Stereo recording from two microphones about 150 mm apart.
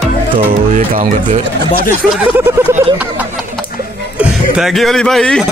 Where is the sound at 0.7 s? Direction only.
60° right (ahead or behind).